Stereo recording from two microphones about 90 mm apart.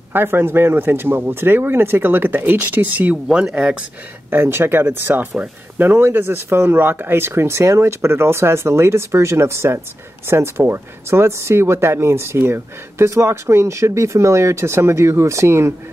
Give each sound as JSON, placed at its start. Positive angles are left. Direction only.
{"t": 0.1, "sound": "speech", "side_deg": -25}
{"t": 3.3, "sound": "speech", "side_deg": -5}
{"t": 4.3, "sound": "speech", "side_deg": -25}